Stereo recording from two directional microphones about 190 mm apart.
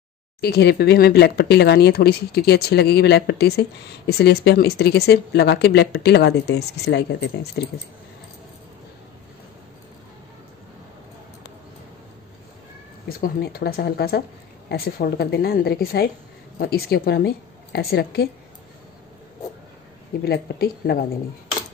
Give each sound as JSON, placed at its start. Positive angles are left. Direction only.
{"t": 0.4, "sound": "speech", "side_deg": 60}
{"t": 13.2, "sound": "speech", "side_deg": 50}
{"t": 20.2, "sound": "speech", "side_deg": 55}